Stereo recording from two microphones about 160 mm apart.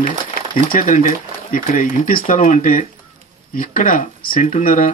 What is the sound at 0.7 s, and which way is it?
Speech, 55° left (ahead or behind).